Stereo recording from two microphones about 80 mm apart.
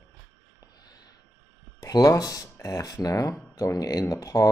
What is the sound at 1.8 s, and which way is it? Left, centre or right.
Speech, left.